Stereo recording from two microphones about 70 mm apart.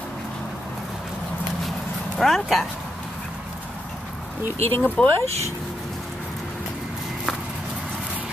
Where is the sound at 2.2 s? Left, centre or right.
Centre.